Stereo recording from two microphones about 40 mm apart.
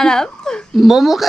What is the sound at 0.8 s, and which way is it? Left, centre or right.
Speech, centre.